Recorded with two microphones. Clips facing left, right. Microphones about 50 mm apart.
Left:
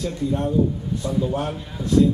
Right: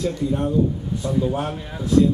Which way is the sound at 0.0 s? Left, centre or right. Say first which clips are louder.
Right 1 dB; centre.